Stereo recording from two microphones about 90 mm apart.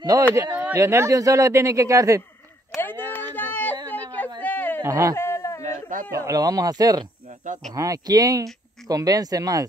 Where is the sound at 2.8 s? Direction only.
25° left (ahead or behind).